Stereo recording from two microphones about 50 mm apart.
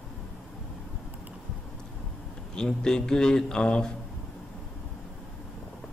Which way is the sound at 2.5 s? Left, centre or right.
Centre.